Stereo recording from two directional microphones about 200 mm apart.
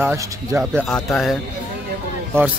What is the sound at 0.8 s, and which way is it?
Speech, 5° left (ahead or behind).